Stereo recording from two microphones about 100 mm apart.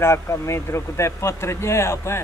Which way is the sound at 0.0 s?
25° left (ahead or behind).